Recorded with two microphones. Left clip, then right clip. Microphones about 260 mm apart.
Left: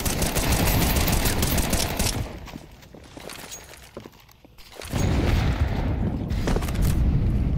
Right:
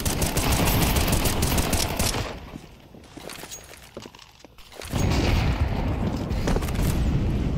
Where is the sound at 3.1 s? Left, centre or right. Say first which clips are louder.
Even; centre.